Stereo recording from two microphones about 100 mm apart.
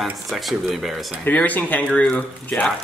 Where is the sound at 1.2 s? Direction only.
15° left (ahead or behind).